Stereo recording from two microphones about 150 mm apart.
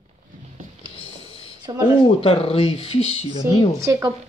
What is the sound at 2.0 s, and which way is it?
Speech, 40° left (ahead or behind).